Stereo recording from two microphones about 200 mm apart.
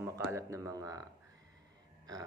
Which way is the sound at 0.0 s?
15° right (ahead or behind).